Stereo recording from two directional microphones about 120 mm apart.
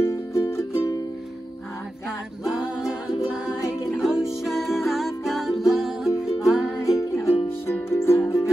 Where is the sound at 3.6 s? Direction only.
25° left (ahead or behind).